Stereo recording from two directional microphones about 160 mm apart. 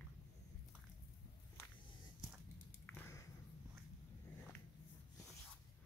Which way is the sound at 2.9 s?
15° left (ahead or behind).